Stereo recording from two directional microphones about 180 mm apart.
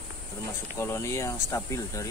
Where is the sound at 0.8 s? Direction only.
15° left (ahead or behind).